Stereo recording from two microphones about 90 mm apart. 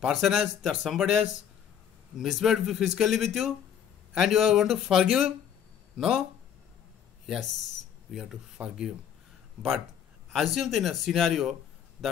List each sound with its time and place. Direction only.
0.0 s speech: 5° right (ahead or behind)
8.1 s speech: 5° right (ahead or behind)
10.3 s speech: centre (ahead or behind)